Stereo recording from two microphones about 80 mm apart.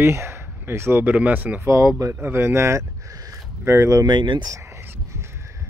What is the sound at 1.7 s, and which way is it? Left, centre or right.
Speech, right.